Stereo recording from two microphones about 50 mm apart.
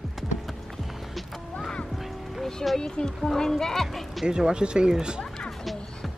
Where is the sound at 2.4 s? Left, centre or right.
Centre.